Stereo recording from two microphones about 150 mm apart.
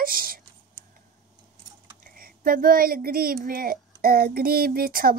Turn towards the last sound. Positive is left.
turn(degrees=-75)  # may be behind; listen again after turning